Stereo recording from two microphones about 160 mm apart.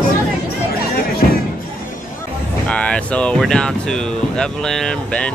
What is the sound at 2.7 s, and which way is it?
Speech, 10° left (ahead or behind).